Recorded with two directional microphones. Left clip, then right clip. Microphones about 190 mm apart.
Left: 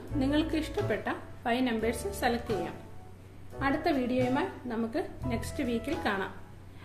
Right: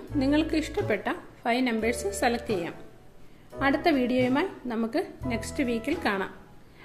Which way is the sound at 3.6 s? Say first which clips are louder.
Right 5 dB; 40° right (ahead or behind).